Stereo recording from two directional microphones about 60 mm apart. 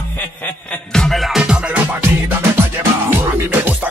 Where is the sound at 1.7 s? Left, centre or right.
Centre.